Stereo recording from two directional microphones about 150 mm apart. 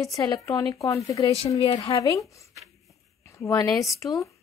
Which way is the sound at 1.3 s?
40° left (ahead or behind).